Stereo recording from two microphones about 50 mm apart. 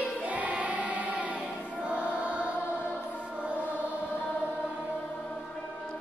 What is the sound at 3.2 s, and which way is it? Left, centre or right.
Mantra, right.